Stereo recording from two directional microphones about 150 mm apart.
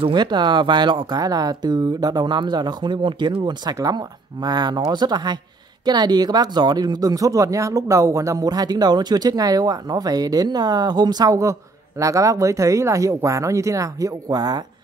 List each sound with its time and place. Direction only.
0.0 s speech: 30° right (ahead or behind)